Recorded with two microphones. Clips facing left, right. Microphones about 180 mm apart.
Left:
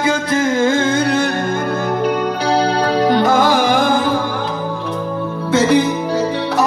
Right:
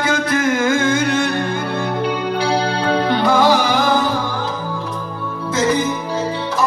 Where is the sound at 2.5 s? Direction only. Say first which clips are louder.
Left 5 dB; 40° left (ahead or behind).